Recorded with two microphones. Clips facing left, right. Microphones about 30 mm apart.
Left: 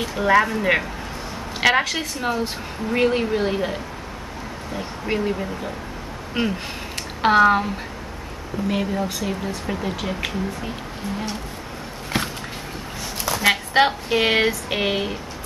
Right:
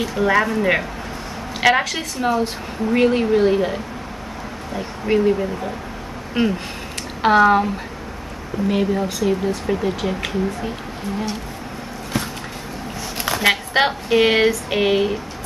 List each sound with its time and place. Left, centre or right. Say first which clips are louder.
0.0 s a woman's voice: even; centre
12.1 s a sound: even; left
13.5 s a woman's voice: even; centre